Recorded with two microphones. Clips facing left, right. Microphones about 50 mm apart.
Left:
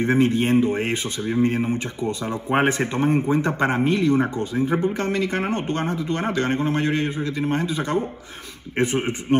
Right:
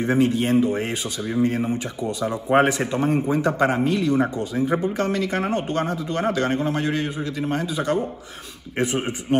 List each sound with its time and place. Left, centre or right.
0.0 s speech: left